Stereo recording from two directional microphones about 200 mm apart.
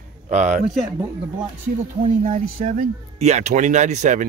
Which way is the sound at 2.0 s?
35° right (ahead or behind).